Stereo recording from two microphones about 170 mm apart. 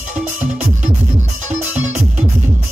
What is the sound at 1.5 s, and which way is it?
Music, 45° right (ahead or behind).